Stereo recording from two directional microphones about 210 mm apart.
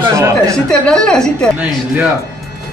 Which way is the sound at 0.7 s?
5° left (ahead or behind).